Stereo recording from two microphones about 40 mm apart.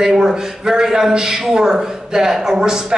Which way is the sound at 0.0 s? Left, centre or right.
Centre.